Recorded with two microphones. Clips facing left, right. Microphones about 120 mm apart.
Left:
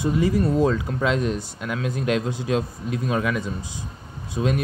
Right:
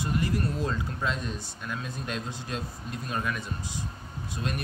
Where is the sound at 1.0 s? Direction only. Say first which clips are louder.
Left 11 dB; 90° left.